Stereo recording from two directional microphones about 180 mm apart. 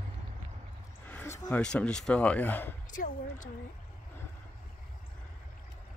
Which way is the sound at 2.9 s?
45° left (ahead or behind).